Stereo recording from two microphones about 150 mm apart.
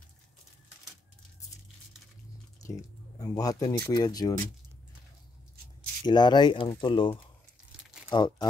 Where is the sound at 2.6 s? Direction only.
25° left (ahead or behind).